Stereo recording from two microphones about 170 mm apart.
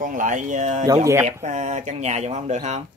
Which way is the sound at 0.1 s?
50° right (ahead or behind).